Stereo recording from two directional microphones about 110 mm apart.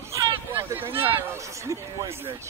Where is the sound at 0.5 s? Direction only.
20° right (ahead or behind).